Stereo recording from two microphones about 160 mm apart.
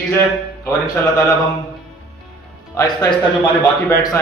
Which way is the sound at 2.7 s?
20° left (ahead or behind).